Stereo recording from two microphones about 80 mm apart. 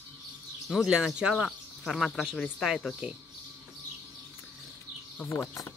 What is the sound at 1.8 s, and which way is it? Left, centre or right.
Speech, centre.